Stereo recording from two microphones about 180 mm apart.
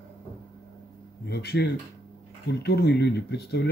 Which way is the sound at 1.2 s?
65° left (ahead or behind).